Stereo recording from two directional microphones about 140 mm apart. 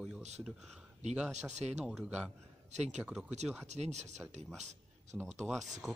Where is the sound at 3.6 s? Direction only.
55° right (ahead or behind).